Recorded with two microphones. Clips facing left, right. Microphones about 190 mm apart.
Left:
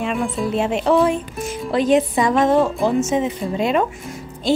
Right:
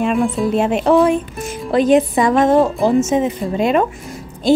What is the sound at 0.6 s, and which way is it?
Speech, 50° right (ahead or behind).